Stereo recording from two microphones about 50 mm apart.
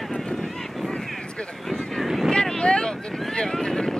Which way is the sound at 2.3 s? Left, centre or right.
Centre.